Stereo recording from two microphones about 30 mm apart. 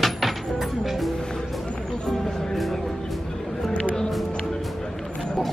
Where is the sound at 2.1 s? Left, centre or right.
Centre.